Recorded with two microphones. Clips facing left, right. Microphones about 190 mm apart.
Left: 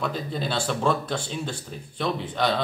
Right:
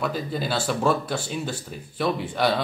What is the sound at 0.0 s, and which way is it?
Speech, 5° right (ahead or behind).